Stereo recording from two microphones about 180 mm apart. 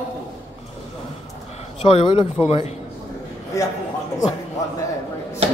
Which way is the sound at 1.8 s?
35° left (ahead or behind).